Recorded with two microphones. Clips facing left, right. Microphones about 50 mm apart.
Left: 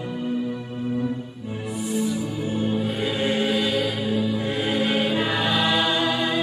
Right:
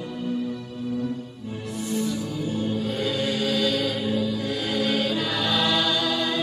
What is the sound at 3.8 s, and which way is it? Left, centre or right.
Music, centre.